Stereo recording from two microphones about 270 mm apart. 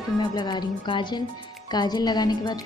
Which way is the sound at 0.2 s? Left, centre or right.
Centre.